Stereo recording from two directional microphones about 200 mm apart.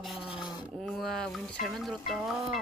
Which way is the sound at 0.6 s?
Centre (ahead or behind).